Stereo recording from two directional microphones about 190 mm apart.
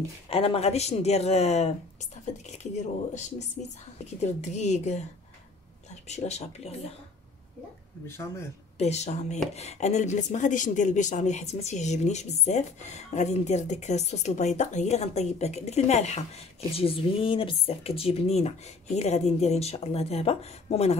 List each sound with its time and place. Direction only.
0.3 s speech: 30° left (ahead or behind)
6.0 s speech: 35° left (ahead or behind)
8.7 s speech: 35° left (ahead or behind)